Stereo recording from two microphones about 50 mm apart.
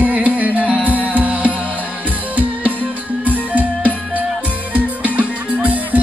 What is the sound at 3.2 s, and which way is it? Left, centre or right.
Music, right.